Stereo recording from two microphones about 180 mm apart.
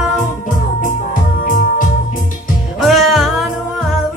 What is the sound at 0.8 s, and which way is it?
Music, 50° left (ahead or behind).